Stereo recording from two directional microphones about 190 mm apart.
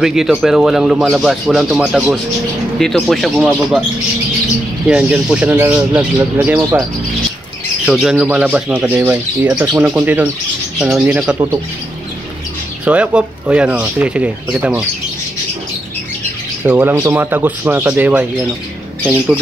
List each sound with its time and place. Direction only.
0.0 s speech: 5° right (ahead or behind)
4.8 s speech: 5° right (ahead or behind)
7.8 s speech: 5° right (ahead or behind)
12.8 s speech: 5° right (ahead or behind)
16.6 s speech: 10° right (ahead or behind)